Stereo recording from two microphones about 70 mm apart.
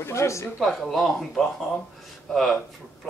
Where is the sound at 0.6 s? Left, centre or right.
Centre.